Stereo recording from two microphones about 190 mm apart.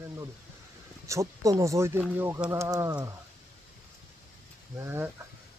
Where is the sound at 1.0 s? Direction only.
15° right (ahead or behind).